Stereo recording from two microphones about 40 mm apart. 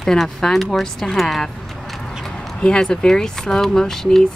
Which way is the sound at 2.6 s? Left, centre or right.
Left.